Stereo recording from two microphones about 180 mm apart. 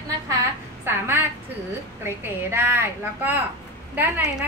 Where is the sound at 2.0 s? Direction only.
15° right (ahead or behind).